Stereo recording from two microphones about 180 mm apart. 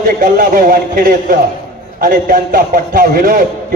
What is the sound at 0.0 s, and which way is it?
A man's voice, 50° right (ahead or behind).